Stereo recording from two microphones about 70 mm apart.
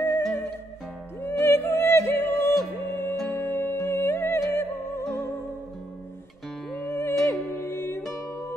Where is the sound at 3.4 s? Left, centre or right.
Left.